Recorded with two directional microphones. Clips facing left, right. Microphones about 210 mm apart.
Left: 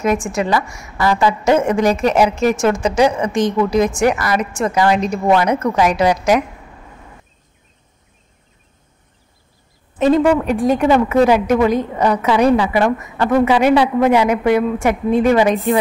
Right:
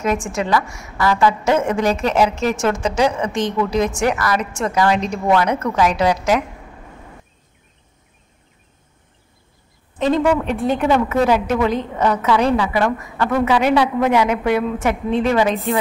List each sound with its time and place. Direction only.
0.3 s a woman's voice: 10° left (ahead or behind)
9.9 s a woman's voice: 10° left (ahead or behind)
13.7 s a woman's voice: 5° left (ahead or behind)